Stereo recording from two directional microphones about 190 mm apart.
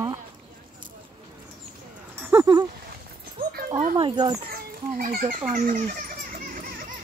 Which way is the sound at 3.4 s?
50° right (ahead or behind).